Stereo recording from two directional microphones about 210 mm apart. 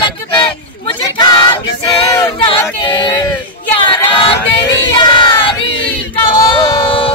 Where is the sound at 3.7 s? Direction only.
25° left (ahead or behind).